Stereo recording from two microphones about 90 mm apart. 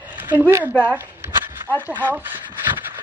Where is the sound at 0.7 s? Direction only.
15° left (ahead or behind).